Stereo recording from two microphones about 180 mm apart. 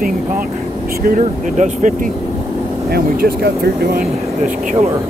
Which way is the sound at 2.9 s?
55° right (ahead or behind).